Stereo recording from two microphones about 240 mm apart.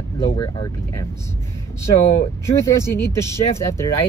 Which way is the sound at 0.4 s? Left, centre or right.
Centre.